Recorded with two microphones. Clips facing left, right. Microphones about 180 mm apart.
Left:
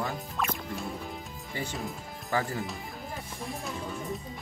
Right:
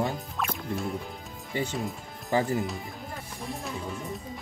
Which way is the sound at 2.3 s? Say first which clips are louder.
Right 4 dB; 20° right (ahead or behind).